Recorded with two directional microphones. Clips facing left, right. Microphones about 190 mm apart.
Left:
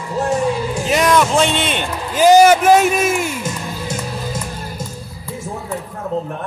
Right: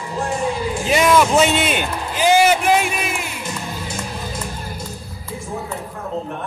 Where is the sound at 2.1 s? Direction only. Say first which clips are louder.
Left 6 dB; 45° left (ahead or behind).